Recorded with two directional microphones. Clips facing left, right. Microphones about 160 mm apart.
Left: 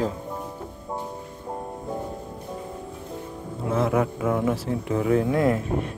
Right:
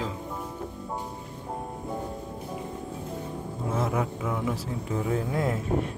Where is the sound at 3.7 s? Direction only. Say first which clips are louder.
Left 6 dB; 60° left (ahead or behind).